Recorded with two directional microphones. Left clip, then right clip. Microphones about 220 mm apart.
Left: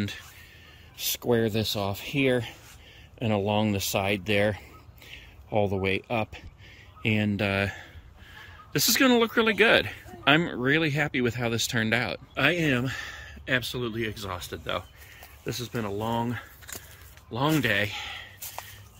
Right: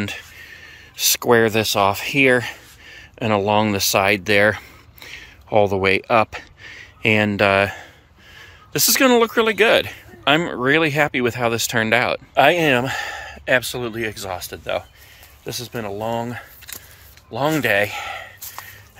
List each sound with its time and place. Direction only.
0.0 s a sound: centre (ahead or behind)
1.9 s speech: centre (ahead or behind)
5.7 s speech: centre (ahead or behind)
6.0 s speech: 35° right (ahead or behind)
6.3 s speech: centre (ahead or behind)